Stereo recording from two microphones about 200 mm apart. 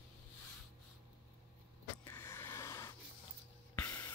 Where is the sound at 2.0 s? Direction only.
10° left (ahead or behind).